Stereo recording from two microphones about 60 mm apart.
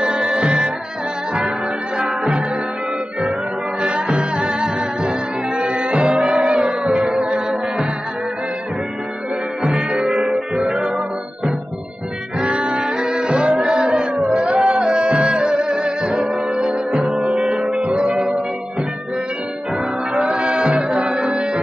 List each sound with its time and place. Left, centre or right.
0.0 s music: centre
2.0 s music: centre
3.8 s music: centre
9.8 s music: centre
10.0 s music: centre
12.4 s music: centre
20.2 s music: centre